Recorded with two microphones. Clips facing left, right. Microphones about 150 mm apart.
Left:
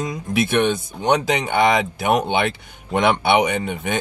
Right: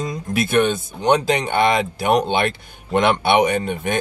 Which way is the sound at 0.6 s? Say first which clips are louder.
Right 1 dB; 10° left (ahead or behind).